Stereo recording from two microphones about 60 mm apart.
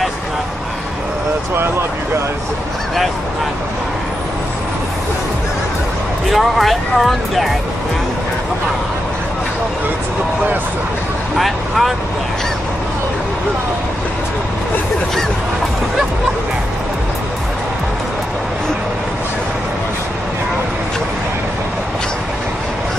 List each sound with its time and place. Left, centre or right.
6.3 s speech: centre
11.3 s speech: centre